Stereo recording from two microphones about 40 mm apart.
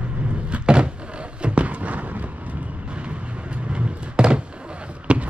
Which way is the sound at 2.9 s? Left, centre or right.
Right.